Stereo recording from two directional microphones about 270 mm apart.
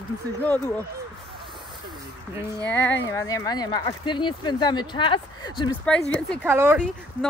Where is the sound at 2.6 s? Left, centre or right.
Centre.